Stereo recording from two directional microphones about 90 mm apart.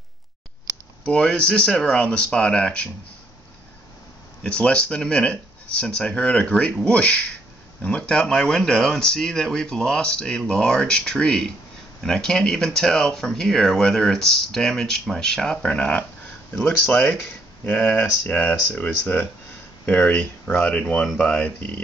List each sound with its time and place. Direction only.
1.0 s speech: 10° left (ahead or behind)
4.4 s speech: 10° left (ahead or behind)